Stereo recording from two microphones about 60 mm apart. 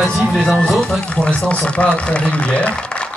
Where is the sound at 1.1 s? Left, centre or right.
Left.